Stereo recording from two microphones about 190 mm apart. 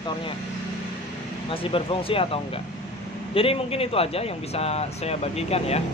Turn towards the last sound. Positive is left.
turn(degrees=35)  # may be behind; listen again after turning